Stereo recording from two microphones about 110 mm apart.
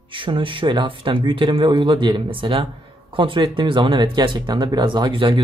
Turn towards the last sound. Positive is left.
turn(degrees=-50)  # may be behind; listen again after turning